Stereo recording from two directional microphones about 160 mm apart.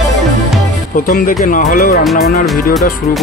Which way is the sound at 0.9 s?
60° left (ahead or behind).